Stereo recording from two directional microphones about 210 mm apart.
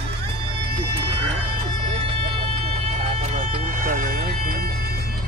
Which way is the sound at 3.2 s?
35° right (ahead or behind).